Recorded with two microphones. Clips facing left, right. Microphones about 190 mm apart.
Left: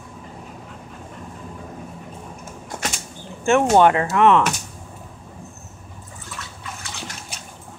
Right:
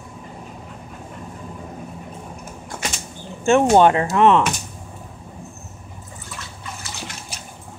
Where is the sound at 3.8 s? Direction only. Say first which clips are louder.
Right 1 dB; 25° right (ahead or behind).